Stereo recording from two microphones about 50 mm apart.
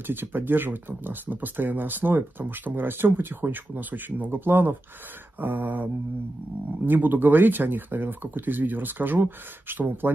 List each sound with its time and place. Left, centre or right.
0.0 s speech: right
6.9 s speech: right